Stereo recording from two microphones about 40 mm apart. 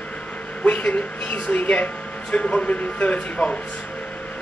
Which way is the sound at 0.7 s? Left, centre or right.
Left.